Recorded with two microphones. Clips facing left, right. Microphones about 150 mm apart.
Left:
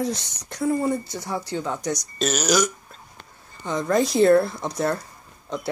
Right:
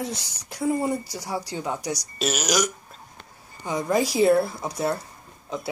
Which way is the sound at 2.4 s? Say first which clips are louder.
Left 4 dB; 30° left (ahead or behind).